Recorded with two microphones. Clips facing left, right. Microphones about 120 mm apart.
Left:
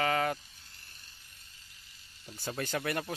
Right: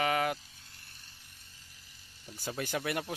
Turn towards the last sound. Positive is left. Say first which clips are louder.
# even
turn(degrees=-10)  # may be behind; listen again after turning